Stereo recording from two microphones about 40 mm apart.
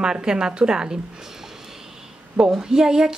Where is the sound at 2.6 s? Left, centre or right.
Centre.